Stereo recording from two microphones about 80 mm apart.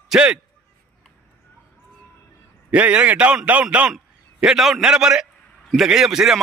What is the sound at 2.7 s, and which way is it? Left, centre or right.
A man's voice, centre.